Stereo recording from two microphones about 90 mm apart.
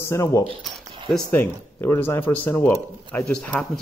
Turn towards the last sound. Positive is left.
turn(degrees=10)  # may be behind; listen again after turning